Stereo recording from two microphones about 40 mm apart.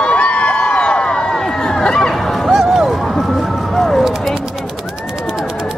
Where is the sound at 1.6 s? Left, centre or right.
Centre.